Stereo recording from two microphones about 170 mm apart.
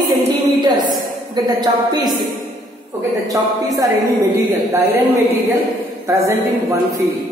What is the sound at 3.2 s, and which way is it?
A woman's voice, 20° right (ahead or behind).